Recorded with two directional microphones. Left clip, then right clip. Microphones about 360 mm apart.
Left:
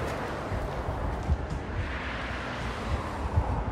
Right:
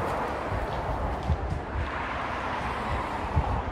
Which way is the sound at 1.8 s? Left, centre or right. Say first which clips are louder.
Right 4 dB; centre.